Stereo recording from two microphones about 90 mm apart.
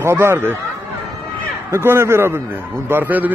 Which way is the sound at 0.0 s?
30° right (ahead or behind).